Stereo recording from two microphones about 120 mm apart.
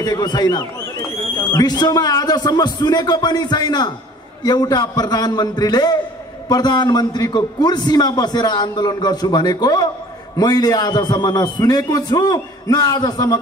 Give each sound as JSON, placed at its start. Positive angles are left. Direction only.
{"t": 0.0, "sound": "a man's voice", "side_deg": 35}